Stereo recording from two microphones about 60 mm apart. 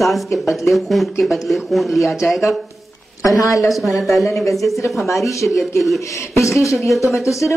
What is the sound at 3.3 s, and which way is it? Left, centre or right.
Speech, left.